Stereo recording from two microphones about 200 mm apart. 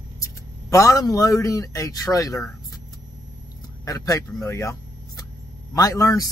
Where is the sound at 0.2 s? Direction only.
15° left (ahead or behind).